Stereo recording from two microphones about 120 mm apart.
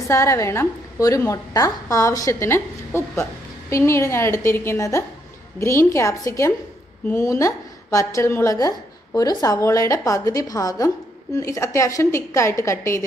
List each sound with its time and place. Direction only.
0.0 s a woman's voice: 25° left (ahead or behind)